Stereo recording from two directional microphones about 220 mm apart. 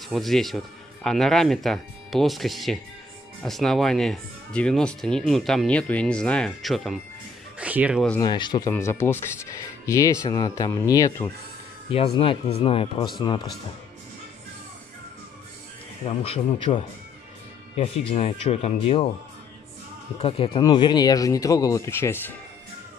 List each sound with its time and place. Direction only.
0.1 s speech: centre (ahead or behind)
8.2 s speech: 20° left (ahead or behind)
11.9 s speech: 25° left (ahead or behind)
16.1 s speech: 30° left (ahead or behind)
20.2 s speech: 25° left (ahead or behind)